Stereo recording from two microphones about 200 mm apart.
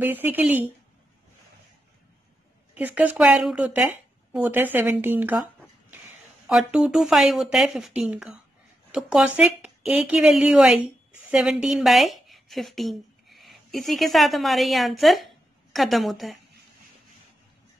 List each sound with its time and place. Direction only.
0.0 s speech: 10° right (ahead or behind)
2.7 s speech: 10° right (ahead or behind)
6.5 s a woman's voice: centre (ahead or behind)